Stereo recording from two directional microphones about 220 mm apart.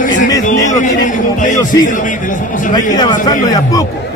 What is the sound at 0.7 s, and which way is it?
Speech, 35° left (ahead or behind).